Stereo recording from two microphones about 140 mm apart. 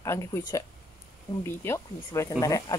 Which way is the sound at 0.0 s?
20° left (ahead or behind).